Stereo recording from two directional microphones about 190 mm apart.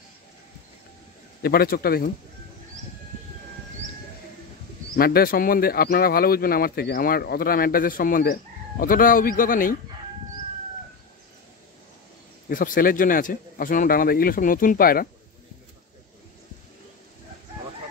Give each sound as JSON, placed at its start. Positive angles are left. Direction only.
{"t": 1.4, "sound": "speech", "side_deg": 55}
{"t": 4.9, "sound": "speech", "side_deg": 55}
{"t": 12.4, "sound": "speech", "side_deg": 45}